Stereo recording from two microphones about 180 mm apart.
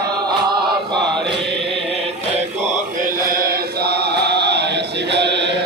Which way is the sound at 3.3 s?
55° right (ahead or behind).